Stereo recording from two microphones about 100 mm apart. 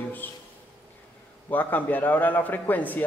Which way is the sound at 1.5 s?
20° left (ahead or behind).